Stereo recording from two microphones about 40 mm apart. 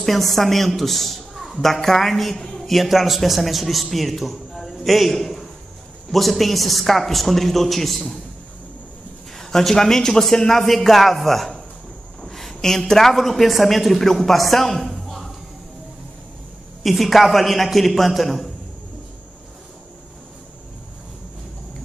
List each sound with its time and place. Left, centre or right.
0.0 s a woman's voice: centre
9.3 s a man's voice: centre
12.3 s a sound: centre
13.1 s a woman's voice: centre
16.8 s a woman's voice: centre